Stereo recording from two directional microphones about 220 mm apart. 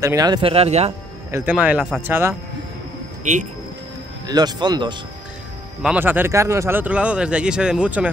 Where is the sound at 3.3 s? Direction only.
35° right (ahead or behind).